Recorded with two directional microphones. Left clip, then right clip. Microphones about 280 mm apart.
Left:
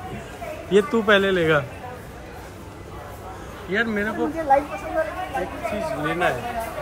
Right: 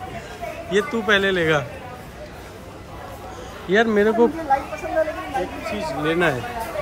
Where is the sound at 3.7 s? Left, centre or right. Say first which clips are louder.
Right 6 dB; centre.